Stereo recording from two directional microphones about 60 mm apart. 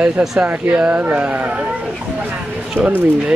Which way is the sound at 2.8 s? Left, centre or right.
Right.